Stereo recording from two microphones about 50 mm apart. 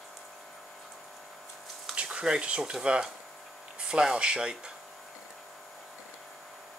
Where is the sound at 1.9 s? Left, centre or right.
Right.